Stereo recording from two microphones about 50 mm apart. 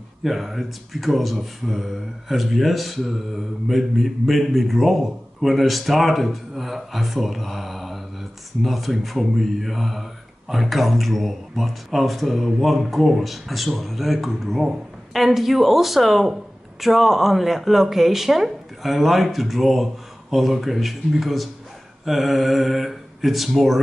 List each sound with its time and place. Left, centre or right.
0.2 s a man's voice: centre